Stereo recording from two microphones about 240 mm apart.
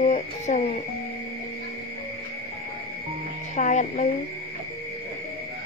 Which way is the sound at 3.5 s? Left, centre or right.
Left.